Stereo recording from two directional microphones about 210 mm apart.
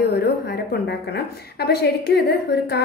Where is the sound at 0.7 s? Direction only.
50° left (ahead or behind).